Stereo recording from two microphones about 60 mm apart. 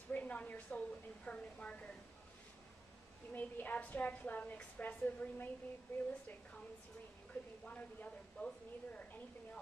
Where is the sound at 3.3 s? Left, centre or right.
Left.